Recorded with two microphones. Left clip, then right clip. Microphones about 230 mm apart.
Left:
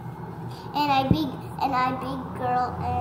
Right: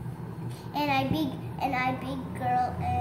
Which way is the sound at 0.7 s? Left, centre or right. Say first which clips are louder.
Left 5 dB; centre.